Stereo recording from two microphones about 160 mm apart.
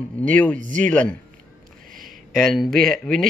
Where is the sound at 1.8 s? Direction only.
60° right (ahead or behind).